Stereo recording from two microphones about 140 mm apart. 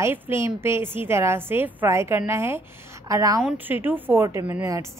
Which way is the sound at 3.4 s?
10° right (ahead or behind).